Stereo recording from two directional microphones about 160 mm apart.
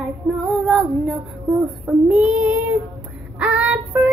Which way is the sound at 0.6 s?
10° left (ahead or behind).